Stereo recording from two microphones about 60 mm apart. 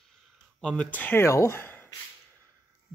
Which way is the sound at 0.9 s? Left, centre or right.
Left.